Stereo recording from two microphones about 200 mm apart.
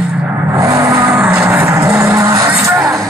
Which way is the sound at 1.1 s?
5° right (ahead or behind).